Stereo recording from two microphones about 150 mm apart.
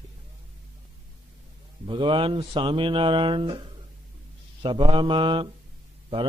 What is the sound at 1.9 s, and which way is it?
Speech, 35° right (ahead or behind).